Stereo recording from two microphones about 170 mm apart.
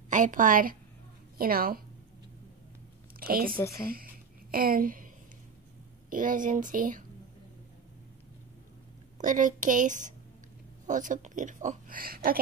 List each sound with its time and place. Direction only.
0.1 s a woman's voice: 50° right (ahead or behind)
3.2 s a woman's voice: 60° right (ahead or behind)
3.5 s a woman's voice: 15° left (ahead or behind)
3.9 s a sound: 60° right (ahead or behind)
6.0 s a woman's voice: 50° right (ahead or behind)
9.2 s a woman's voice: 50° right (ahead or behind)